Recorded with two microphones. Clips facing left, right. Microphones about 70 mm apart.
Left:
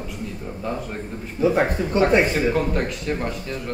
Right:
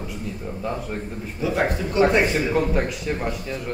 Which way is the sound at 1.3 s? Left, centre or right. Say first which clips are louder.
Left 4 dB; left.